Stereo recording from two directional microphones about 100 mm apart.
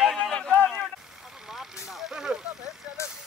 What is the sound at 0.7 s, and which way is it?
Vehicle, centre (ahead or behind).